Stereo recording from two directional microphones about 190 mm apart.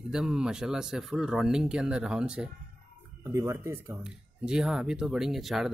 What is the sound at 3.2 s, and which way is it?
Speech, 15° right (ahead or behind).